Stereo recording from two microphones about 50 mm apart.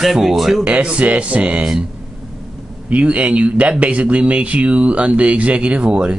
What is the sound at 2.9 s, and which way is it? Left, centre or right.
Speech, right.